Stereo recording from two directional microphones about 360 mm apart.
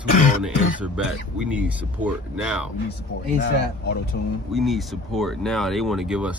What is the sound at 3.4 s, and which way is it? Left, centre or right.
Speech, left.